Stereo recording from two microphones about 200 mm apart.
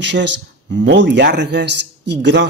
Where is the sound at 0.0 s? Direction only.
60° right (ahead or behind).